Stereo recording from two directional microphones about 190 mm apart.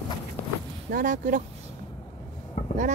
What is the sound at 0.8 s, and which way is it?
Speech, 45° right (ahead or behind).